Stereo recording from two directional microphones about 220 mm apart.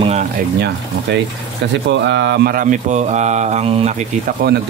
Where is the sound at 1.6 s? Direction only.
55° right (ahead or behind).